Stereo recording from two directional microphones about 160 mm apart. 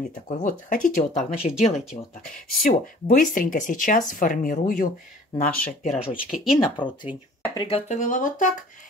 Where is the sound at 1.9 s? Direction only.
35° left (ahead or behind).